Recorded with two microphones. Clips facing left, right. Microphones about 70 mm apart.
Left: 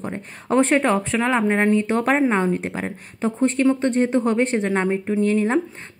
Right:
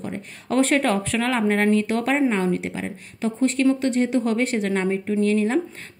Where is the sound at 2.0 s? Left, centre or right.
Left.